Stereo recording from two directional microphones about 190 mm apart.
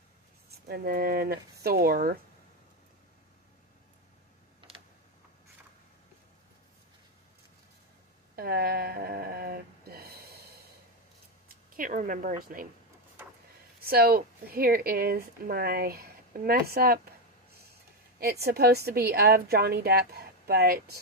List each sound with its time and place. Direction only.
0.7 s speech: 55° right (ahead or behind)
8.4 s a sound: 50° right (ahead or behind)
11.7 s speech: 45° right (ahead or behind)
13.8 s speech: 55° right (ahead or behind)
18.2 s a woman's voice: 55° right (ahead or behind)